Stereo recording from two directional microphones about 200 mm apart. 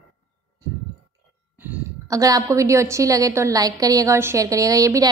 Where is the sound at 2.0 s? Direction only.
15° right (ahead or behind).